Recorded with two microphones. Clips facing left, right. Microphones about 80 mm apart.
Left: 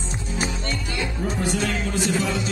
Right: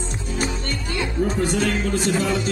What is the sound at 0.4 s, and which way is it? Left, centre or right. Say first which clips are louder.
Music: right 1 dB; right.